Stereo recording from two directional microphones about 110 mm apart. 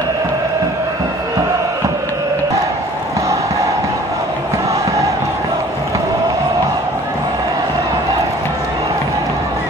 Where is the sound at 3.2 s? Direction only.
30° right (ahead or behind).